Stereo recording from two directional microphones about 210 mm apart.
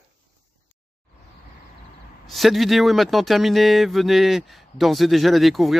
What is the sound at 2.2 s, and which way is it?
Speech, centre (ahead or behind).